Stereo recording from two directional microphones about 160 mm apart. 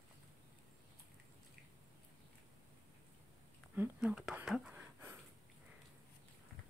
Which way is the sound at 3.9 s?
5° right (ahead or behind).